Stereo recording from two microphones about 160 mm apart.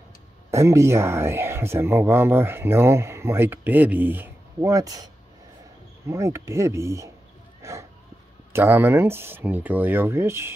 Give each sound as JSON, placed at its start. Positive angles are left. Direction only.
{"t": 0.5, "sound": "speech", "side_deg": -20}
{"t": 7.6, "sound": "a sound", "side_deg": -20}
{"t": 8.5, "sound": "speech", "side_deg": -15}